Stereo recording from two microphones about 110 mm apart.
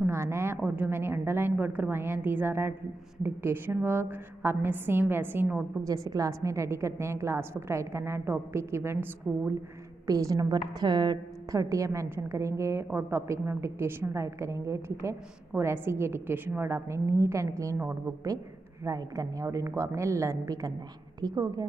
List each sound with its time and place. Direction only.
0.0 s a woman's voice: 25° right (ahead or behind)
5.9 s a woman's voice: 30° right (ahead or behind)
10.0 s a woman's voice: 35° right (ahead or behind)
11.5 s a woman's voice: 30° right (ahead or behind)
18.9 s a woman's voice: 30° right (ahead or behind)